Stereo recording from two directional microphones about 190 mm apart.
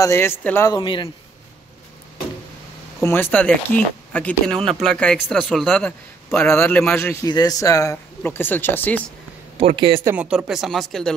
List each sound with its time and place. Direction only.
0.0 s a man's voice: 15° left (ahead or behind)
0.7 s a man's voice: 25° left (ahead or behind)
3.0 s a man's voice: 10° left (ahead or behind)
9.6 s speech: 30° right (ahead or behind)
10.0 s speech: 5° right (ahead or behind)